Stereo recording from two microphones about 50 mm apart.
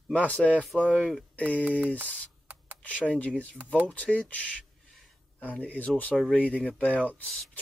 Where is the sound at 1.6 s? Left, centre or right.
Right.